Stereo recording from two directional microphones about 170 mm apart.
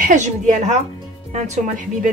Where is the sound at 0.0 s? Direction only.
45° right (ahead or behind).